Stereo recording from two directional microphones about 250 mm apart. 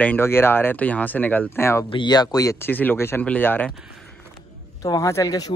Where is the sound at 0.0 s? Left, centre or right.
Centre.